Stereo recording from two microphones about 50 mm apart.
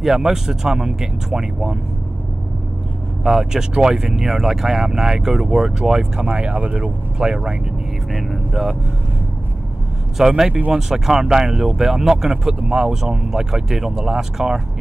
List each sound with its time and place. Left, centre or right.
0.0 s speech: centre
3.3 s speech: centre
6.2 s speech: right
7.2 s speech: centre
8.2 s speech: centre
10.1 s speech: centre